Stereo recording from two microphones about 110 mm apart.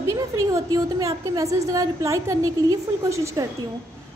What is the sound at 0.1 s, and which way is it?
A woman's voice, 30° right (ahead or behind).